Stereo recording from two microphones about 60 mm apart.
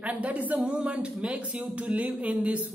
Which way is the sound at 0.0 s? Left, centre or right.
Right.